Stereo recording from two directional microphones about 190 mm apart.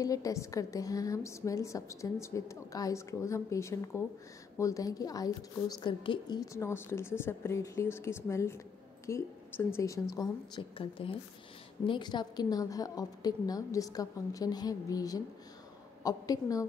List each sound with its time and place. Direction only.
0.0 s a woman's voice: 20° left (ahead or behind)